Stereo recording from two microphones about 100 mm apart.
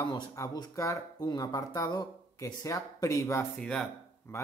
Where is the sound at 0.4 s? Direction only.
35° left (ahead or behind).